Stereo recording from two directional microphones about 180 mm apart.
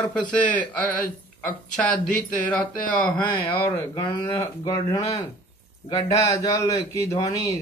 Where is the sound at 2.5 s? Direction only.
5° left (ahead or behind).